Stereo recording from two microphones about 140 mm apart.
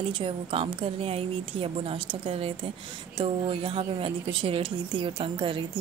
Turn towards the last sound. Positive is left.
turn(degrees=-35)  # may be behind; listen again after turning